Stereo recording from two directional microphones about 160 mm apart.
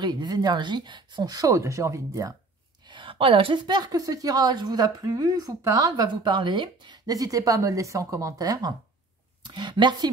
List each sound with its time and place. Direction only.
0.0 s a woman's voice: 25° right (ahead or behind)
2.9 s a woman's voice: 30° right (ahead or behind)